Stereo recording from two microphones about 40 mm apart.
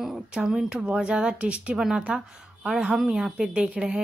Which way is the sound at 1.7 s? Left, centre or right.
Centre.